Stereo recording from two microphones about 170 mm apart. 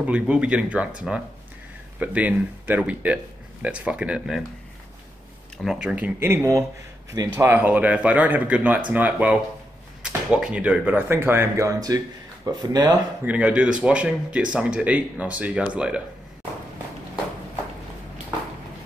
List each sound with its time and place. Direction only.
0.0 s speech: 5° right (ahead or behind)
5.6 s speech: centre (ahead or behind); by 12.9 s 25° right (ahead or behind)
13.2 s speech: 5° right (ahead or behind)